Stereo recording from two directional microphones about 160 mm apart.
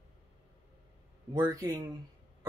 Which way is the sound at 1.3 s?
20° right (ahead or behind).